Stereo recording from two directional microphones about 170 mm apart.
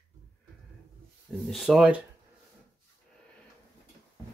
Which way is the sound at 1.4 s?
Centre (ahead or behind).